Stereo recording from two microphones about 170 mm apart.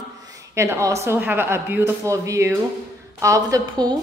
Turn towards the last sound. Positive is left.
turn(degrees=-20)  # may be behind; listen again after turning